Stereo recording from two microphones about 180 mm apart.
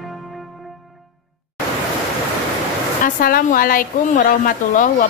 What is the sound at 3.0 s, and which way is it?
Speech, 50° left (ahead or behind).